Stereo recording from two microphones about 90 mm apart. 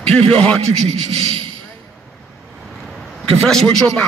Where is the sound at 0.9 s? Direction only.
90° right.